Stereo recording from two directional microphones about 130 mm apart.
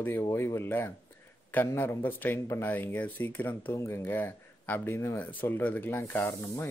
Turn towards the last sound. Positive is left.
turn(degrees=15)  # may be behind; listen again after turning